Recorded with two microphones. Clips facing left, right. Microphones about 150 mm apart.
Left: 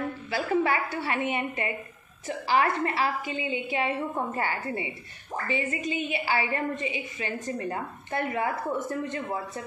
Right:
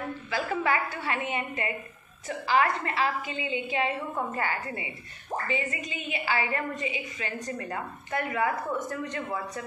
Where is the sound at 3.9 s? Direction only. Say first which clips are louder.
Left 2 dB; 25° left (ahead or behind).